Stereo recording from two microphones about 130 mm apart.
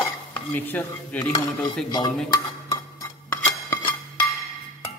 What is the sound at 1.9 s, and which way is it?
Dishes, 35° left (ahead or behind).